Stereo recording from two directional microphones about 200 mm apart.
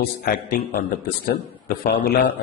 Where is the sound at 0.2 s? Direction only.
50° left (ahead or behind).